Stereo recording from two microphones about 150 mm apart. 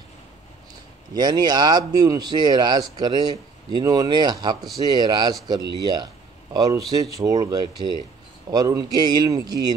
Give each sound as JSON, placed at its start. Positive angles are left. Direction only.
{"t": 1.1, "sound": "speech", "side_deg": -25}